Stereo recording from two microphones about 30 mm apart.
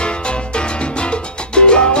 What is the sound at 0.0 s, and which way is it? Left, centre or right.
Music, left.